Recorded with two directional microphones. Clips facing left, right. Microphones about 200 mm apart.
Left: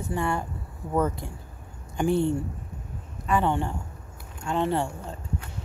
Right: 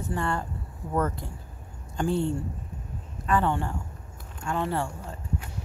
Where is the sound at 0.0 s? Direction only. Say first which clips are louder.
Left 2 dB; 10° left (ahead or behind).